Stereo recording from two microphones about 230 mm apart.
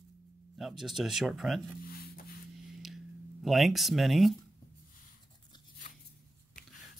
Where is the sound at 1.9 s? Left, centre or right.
Left.